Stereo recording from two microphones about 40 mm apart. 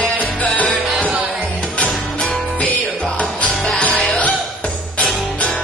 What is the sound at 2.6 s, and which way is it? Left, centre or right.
Music, left.